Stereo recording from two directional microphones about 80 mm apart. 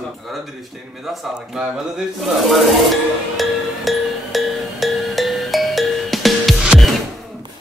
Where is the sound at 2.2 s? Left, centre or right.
Centre.